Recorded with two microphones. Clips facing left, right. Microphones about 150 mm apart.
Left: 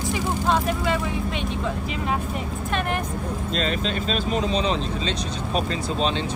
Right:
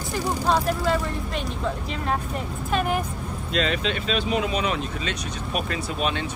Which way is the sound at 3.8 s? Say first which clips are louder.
Even; 35° left (ahead or behind).